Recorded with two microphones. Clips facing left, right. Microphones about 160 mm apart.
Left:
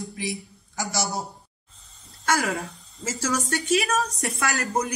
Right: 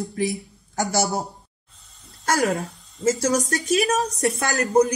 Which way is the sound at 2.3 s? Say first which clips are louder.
Right 4 dB; 35° right (ahead or behind).